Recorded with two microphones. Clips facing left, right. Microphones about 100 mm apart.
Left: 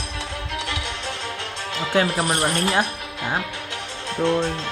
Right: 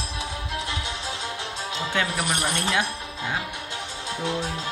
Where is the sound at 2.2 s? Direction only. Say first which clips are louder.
Left 5 dB; 30° left (ahead or behind).